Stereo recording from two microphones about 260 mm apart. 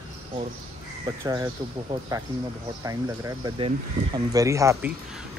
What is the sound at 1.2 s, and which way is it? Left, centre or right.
Speech, centre.